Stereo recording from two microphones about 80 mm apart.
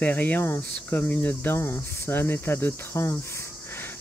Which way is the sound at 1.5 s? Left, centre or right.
Left.